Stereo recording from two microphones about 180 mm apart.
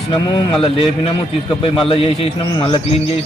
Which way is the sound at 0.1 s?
25° left (ahead or behind).